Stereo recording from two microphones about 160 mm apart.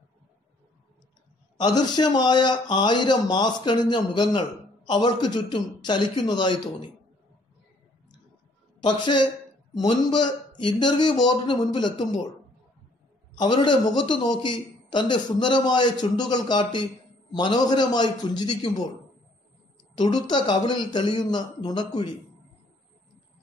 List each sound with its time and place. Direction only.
1.6 s speech: 25° left (ahead or behind)
8.8 s speech: 30° left (ahead or behind)
13.3 s speech: 30° left (ahead or behind)
20.0 s speech: 25° left (ahead or behind)